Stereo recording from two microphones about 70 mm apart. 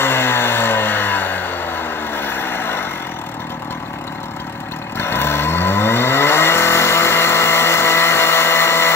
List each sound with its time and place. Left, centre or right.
0.0 s music: left
4.9 s vehicle: left